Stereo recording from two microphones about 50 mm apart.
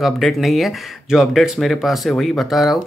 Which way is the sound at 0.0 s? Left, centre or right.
Centre.